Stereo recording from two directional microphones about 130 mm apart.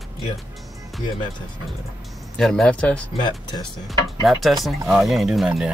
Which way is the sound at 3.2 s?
35° left (ahead or behind).